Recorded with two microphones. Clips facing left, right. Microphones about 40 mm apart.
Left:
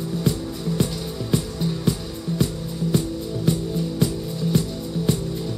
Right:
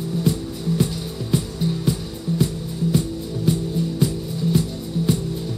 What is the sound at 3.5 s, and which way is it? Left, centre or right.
Music, centre.